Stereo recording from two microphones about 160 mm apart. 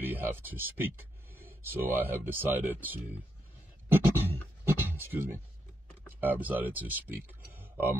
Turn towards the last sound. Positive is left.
turn(degrees=-10)  # may be behind; listen again after turning